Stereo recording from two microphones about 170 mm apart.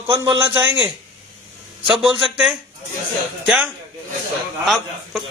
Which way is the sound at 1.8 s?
5° right (ahead or behind).